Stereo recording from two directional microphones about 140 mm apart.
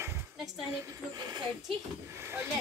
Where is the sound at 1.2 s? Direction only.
30° right (ahead or behind).